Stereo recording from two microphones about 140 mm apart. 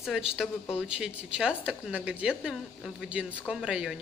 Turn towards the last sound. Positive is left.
turn(degrees=-5)  # may be behind; listen again after turning